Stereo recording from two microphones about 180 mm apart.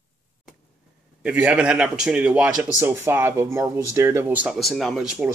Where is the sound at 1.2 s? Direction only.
10° right (ahead or behind).